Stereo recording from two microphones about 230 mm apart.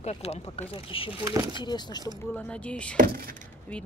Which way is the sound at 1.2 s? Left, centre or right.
Centre.